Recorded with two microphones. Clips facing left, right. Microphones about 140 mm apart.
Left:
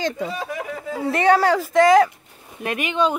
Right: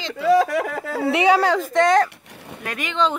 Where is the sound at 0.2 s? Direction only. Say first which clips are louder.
Right 10 dB; 90° right.